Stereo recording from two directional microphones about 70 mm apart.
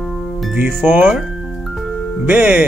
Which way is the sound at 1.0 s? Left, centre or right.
Centre.